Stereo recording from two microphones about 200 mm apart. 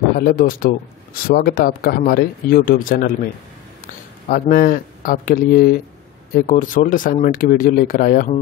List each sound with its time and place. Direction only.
0.2 s a man's voice: 45° left (ahead or behind)